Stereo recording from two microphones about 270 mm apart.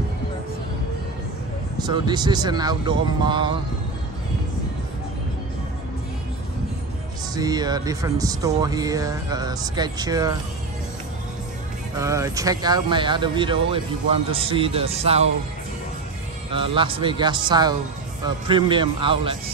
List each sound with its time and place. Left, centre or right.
1.8 s speech: centre
7.3 s speech: centre
12.0 s speech: centre
16.5 s speech: centre